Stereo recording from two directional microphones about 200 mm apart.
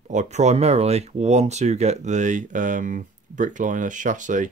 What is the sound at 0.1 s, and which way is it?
Speech, 35° right (ahead or behind).